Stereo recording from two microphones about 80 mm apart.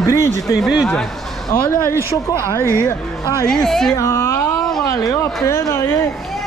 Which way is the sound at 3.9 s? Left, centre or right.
Left.